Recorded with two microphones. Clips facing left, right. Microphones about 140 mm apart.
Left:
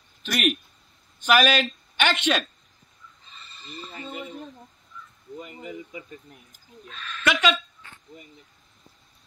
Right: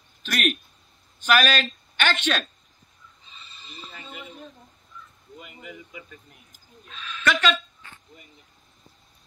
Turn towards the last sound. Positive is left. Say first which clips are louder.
# even
turn(degrees=10)  # may be behind; listen again after turning